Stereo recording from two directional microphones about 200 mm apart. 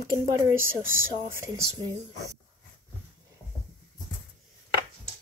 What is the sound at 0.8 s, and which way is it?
Speech, 45° right (ahead or behind).